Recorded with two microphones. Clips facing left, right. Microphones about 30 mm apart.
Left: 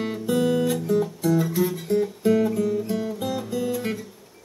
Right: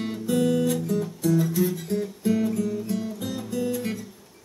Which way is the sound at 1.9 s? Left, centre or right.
Left.